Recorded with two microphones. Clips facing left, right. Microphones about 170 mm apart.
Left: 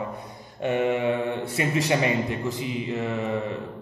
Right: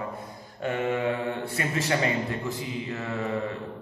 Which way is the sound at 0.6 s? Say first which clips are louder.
Left 4 dB; 20° left (ahead or behind).